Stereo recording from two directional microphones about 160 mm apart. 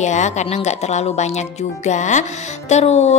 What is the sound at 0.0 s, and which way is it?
A woman's voice, 45° left (ahead or behind).